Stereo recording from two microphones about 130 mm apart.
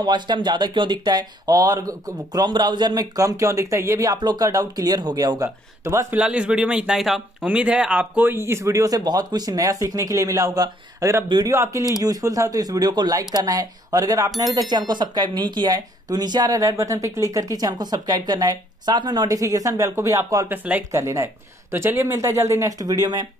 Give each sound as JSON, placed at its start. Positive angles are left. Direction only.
{"t": 0.0, "sound": "speech", "side_deg": -35}
{"t": 6.1, "sound": "speech", "side_deg": -10}
{"t": 11.2, "sound": "speech", "side_deg": -35}
{"t": 11.5, "sound": "speech", "side_deg": -25}
{"t": 20.4, "sound": "speech", "side_deg": -10}
{"t": 20.9, "sound": "speech", "side_deg": -25}